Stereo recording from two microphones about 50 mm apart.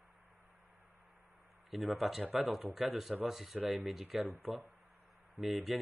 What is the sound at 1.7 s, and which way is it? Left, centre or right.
Speech, centre.